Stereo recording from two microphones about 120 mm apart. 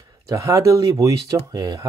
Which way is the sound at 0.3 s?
30° right (ahead or behind).